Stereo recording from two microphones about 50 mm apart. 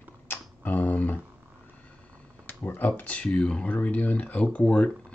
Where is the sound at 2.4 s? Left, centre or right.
Left.